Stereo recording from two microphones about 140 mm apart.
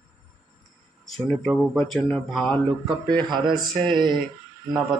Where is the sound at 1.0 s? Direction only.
5° left (ahead or behind).